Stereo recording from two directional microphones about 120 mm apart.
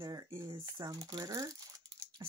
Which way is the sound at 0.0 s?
35° right (ahead or behind).